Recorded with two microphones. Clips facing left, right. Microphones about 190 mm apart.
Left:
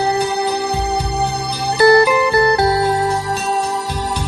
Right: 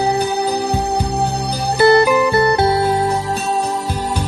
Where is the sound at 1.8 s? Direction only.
20° right (ahead or behind).